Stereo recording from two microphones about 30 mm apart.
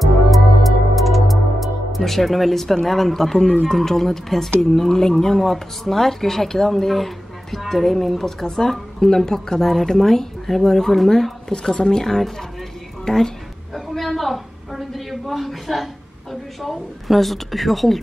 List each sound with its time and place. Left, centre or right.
0.0 s music: centre
3.6 s speech: centre
9.6 s speech: centre
11.7 s a woman's voice: left
13.9 s a woman's voice: centre